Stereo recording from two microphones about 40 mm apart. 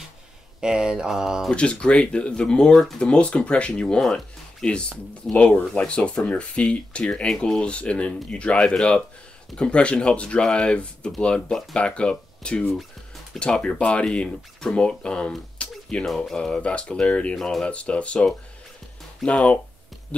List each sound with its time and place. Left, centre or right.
0.6 s mantra: centre
1.5 s speech: left
7.2 s speech: centre
7.6 s speech: left
17.4 s speech: centre
17.6 s speech: left
19.2 s speech: left